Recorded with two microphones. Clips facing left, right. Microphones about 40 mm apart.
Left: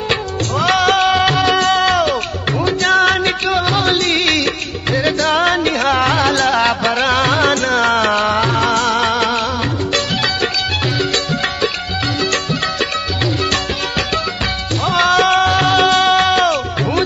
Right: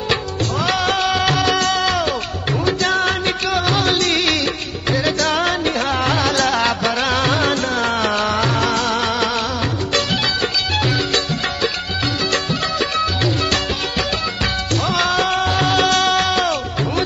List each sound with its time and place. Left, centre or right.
0.8 s music: left
1.1 s music: centre
1.6 s music: left
2.8 s music: left
3.6 s music: centre
3.9 s music: centre
6.5 s music of bollywood: centre
7.9 s music: left
8.6 s music: left
15.0 s music: left
15.4 s music: centre